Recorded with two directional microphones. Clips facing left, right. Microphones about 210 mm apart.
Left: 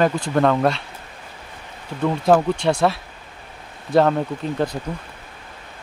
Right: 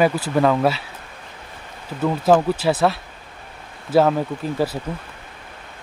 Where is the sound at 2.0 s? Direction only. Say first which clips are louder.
Even; centre (ahead or behind).